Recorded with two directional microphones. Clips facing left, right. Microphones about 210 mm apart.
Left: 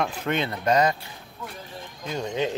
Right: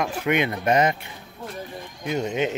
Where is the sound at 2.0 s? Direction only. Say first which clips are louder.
Right 3 dB; 20° right (ahead or behind).